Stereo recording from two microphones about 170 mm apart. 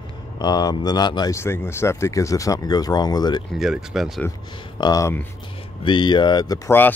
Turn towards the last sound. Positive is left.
turn(degrees=15)  # may be behind; listen again after turning